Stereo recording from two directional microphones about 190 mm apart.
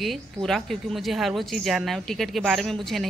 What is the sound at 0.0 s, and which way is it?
A woman's voice, centre (ahead or behind).